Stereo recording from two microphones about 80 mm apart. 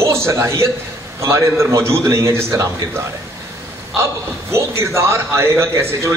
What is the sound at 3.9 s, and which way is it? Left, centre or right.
A man's voice, right.